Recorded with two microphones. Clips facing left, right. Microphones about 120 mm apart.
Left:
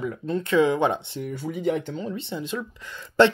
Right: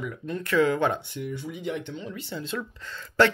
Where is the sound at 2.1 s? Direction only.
20° left (ahead or behind).